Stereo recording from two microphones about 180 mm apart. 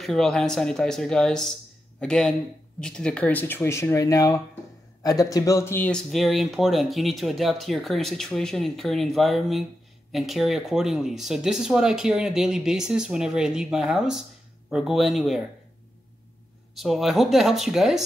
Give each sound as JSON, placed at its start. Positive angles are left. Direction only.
{"t": 0.0, "sound": "speech", "side_deg": 0}
{"t": 16.7, "sound": "speech", "side_deg": 0}